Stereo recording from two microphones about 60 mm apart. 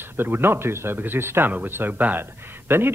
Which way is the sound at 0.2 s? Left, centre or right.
Right.